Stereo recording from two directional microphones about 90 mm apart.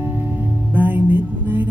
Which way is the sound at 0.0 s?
25° right (ahead or behind).